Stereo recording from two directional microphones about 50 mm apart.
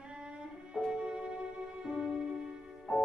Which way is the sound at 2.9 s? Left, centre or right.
Left.